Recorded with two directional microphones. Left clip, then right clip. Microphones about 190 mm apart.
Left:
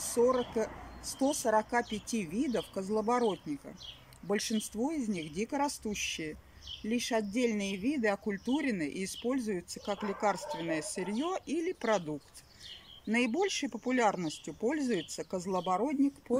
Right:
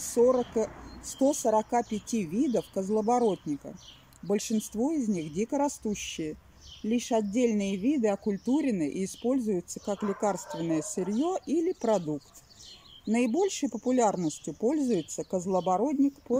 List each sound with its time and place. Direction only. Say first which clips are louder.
0.0 s speech: right 4 dB; 15° right (ahead or behind)
13.1 s speech: right 3 dB; 15° right (ahead or behind)
16.3 s speech: right 3 dB; 5° left (ahead or behind)